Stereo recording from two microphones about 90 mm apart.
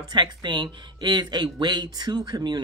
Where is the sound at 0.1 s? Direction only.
55° right (ahead or behind).